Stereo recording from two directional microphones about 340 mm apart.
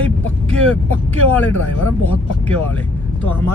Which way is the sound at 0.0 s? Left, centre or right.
Centre.